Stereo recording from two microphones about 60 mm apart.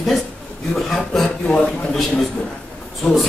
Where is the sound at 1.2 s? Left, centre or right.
Centre.